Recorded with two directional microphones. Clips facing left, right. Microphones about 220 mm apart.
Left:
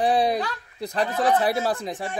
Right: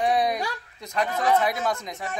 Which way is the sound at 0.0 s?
30° left (ahead or behind).